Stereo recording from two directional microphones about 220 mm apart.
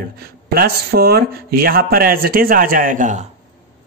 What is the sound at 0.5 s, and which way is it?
Speech, 45° right (ahead or behind).